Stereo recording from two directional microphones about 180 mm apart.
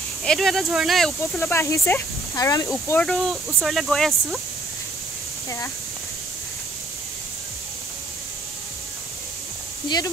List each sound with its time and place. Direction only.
0.2 s speech: centre (ahead or behind)
1.4 s speech: 15° left (ahead or behind)
2.9 s speech: 5° left (ahead or behind)